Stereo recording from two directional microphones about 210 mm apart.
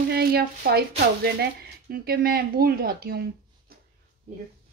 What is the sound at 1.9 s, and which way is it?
Speech, 45° right (ahead or behind).